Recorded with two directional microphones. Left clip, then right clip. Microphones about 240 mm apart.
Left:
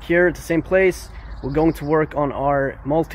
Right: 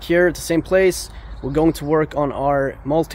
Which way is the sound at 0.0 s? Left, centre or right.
Centre.